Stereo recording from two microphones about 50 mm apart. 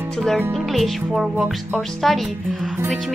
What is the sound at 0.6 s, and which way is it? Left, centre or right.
Music, centre.